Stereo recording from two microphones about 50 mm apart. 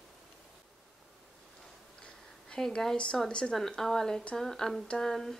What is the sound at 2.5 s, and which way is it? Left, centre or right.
A woman's voice, centre.